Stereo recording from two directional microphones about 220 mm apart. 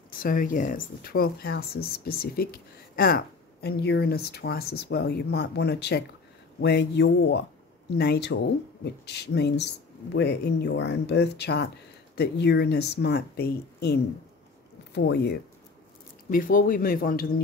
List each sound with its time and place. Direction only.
0.2 s speech: 40° left (ahead or behind)
15.0 s speech: 50° left (ahead or behind)
16.3 s speech: 40° left (ahead or behind)